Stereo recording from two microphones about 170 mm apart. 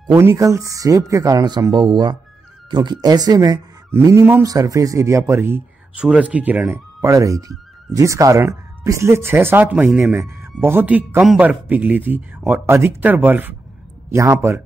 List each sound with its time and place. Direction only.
0.1 s speech: 15° right (ahead or behind)